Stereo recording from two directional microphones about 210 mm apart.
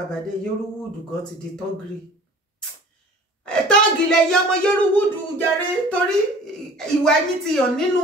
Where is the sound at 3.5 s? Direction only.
5° left (ahead or behind).